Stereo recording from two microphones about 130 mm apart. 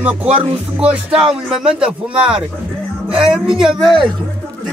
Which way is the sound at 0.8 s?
50° right (ahead or behind).